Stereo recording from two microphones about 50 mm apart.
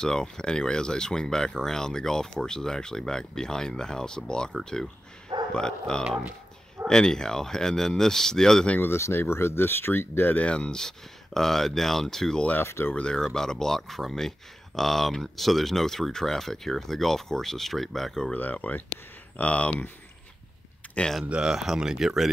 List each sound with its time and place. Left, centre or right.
0.0 s speech: centre
8.9 s speech: left
10.3 s speech: left; by 18.3 s centre
18.3 s speech: left
20.8 s a sound: left
21.3 s speech: centre